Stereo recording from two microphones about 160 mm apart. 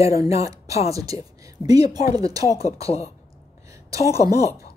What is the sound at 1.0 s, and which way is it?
Speech, 20° right (ahead or behind).